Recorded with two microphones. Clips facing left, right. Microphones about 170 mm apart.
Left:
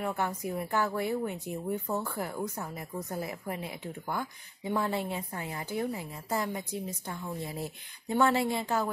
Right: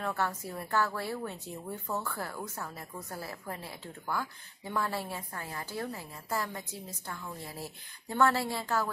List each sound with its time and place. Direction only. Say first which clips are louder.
0.0 s a woman's voice: left 2 dB; 15° left (ahead or behind)